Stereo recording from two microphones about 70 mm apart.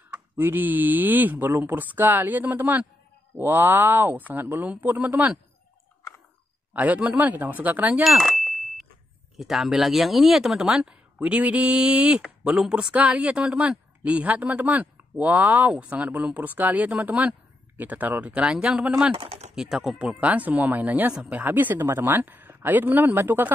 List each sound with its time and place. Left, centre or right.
0.1 s speech: right
6.7 s speech: right
8.0 s a sound: centre
9.4 s speech: centre; by 18.4 s right
18.4 s speech: centre
20.2 s speech: right